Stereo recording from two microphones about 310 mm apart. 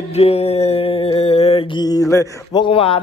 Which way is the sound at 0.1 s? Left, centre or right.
Left.